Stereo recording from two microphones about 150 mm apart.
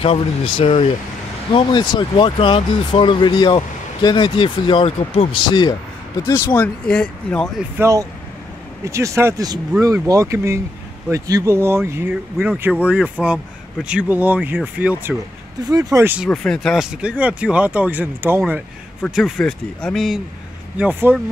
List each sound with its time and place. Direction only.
0.0 s speech: 40° left (ahead or behind)
6.2 s speech: 20° left (ahead or behind)
7.8 s speech: 20° right (ahead or behind)
15.7 s speech: 20° right (ahead or behind)
16.3 s speech: 5° left (ahead or behind); by 18.4 s 15° right (ahead or behind)
19.1 s speech: 5° left (ahead or behind)
20.7 s speech: 10° right (ahead or behind)